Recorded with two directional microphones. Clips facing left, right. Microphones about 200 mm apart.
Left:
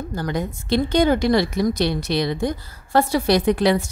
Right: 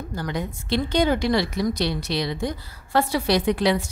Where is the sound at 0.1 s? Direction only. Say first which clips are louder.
Left 3 dB; 45° left (ahead or behind).